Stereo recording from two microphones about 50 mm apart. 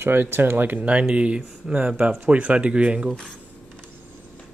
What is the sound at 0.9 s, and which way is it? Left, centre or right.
Speech, right.